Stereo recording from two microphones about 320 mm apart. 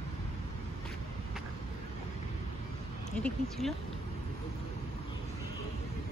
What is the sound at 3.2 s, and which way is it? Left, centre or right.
Speech, centre.